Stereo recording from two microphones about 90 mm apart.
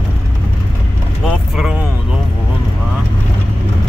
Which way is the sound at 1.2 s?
5° right (ahead or behind).